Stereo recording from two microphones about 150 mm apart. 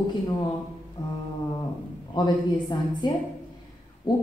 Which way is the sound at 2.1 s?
30° left (ahead or behind).